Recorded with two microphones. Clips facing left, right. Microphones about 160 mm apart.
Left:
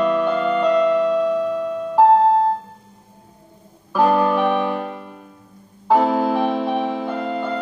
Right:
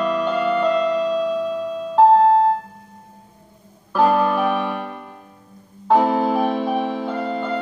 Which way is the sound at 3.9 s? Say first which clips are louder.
Left 1 dB; centre (ahead or behind).